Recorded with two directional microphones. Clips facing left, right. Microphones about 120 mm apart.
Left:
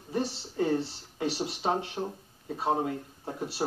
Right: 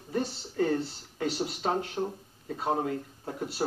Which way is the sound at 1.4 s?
10° left (ahead or behind).